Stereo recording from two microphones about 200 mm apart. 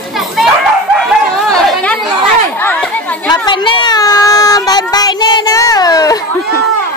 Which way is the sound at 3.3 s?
25° left (ahead or behind).